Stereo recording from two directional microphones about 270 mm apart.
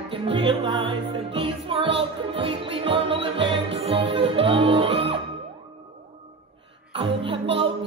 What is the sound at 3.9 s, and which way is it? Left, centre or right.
Music, right.